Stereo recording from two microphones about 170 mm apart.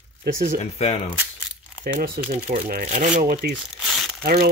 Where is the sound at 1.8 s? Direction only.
60° right (ahead or behind).